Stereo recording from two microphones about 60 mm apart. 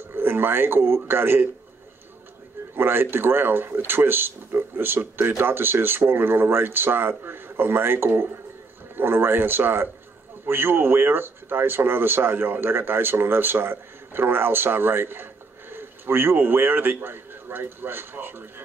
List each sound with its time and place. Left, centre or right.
0.1 s a man's voice: right
2.7 s a man's voice: right